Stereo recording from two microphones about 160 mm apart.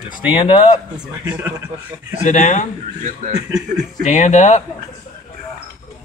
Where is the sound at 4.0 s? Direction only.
50° left (ahead or behind).